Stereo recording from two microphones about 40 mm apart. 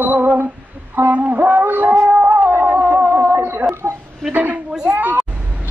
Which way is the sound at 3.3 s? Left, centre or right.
Right.